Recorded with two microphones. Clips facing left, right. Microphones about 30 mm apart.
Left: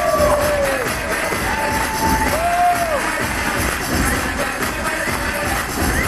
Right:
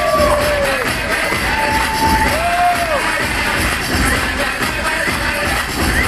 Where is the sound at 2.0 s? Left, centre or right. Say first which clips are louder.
Right 2 dB; right.